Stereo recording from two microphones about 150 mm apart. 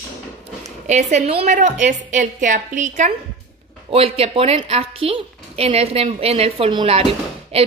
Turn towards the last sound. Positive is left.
turn(degrees=-40)  # may be behind; listen again after turning